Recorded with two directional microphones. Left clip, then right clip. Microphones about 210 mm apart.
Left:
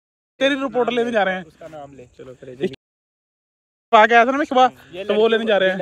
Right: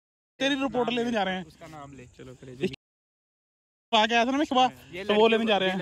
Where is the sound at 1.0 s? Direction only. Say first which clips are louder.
Left 9 dB; 10° right (ahead or behind).